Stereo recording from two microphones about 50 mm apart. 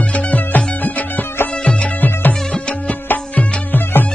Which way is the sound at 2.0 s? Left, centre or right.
Left.